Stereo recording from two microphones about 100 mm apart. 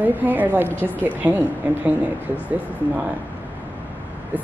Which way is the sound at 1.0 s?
20° right (ahead or behind).